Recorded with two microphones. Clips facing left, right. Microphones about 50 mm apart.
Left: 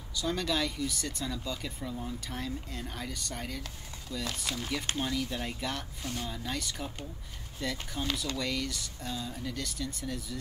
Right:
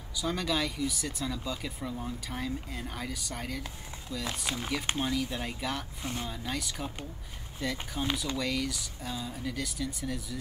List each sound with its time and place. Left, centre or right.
0.1 s speech: centre
8.4 s speech: centre